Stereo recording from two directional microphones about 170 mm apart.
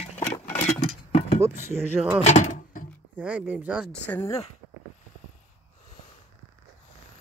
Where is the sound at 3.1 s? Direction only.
10° right (ahead or behind).